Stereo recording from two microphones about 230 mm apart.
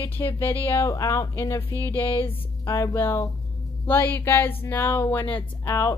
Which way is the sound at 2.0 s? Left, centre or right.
Left.